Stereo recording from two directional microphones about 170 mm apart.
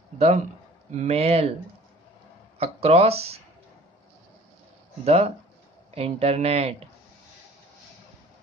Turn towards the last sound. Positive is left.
turn(degrees=-35)  # may be behind; listen again after turning